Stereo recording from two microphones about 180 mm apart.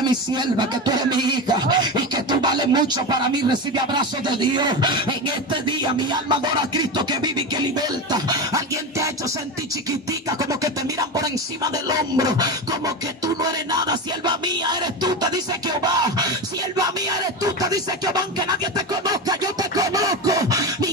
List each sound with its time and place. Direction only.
0.0 s speech: 25° right (ahead or behind)
8.1 s beatboxing: 20° right (ahead or behind)
10.6 s speech: 20° right (ahead or behind)
19.0 s beatboxing: 20° right (ahead or behind)